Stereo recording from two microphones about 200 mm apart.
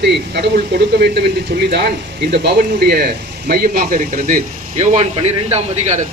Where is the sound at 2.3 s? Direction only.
50° right (ahead or behind).